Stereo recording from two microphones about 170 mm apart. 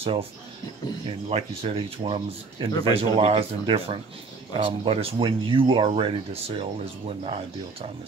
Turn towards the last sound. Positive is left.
turn(degrees=-35)  # may be behind; listen again after turning